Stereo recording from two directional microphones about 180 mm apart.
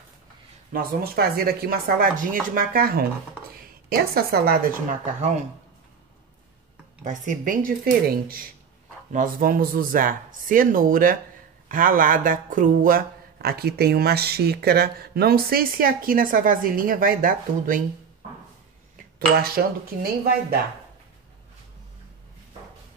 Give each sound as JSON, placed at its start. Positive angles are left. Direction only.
{"t": 0.7, "sound": "speech", "side_deg": -60}
{"t": 7.0, "sound": "speech", "side_deg": -45}
{"t": 19.1, "sound": "speech", "side_deg": -55}